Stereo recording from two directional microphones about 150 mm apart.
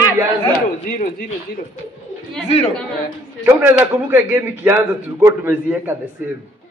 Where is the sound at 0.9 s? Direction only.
75° left (ahead or behind).